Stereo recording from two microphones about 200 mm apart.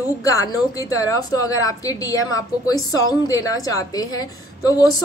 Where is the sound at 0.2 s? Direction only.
15° left (ahead or behind).